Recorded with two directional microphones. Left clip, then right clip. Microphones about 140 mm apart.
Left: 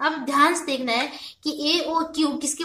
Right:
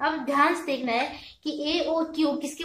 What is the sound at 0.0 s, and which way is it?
A woman's voice, 55° left (ahead or behind).